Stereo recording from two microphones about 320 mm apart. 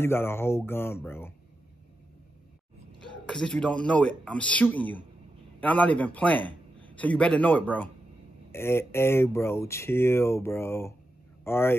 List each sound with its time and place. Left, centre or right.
0.0 s speech: centre
3.3 s a man's voice: centre